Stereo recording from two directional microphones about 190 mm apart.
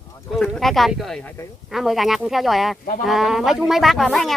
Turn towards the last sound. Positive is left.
turn(degrees=0)  # may be behind; listen again after turning